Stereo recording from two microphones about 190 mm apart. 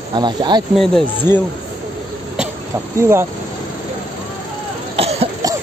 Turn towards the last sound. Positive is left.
turn(degrees=-30)  # may be behind; listen again after turning